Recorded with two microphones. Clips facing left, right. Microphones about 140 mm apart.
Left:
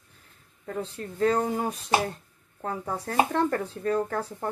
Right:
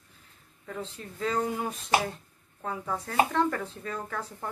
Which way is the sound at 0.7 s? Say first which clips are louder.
Left 5 dB; 40° left (ahead or behind).